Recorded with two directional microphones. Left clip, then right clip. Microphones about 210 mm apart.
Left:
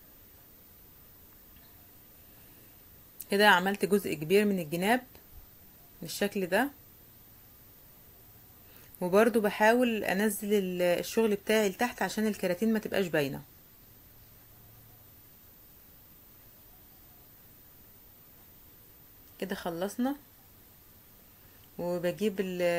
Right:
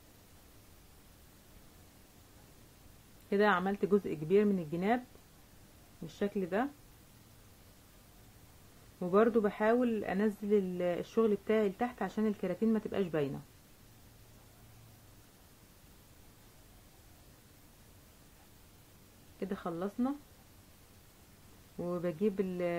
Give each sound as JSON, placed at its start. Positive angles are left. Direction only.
{"t": 3.3, "sound": "speech", "side_deg": 15}
{"t": 6.1, "sound": "speech", "side_deg": 20}
{"t": 9.0, "sound": "speech", "side_deg": 15}
{"t": 19.4, "sound": "speech", "side_deg": 10}
{"t": 21.7, "sound": "speech", "side_deg": 5}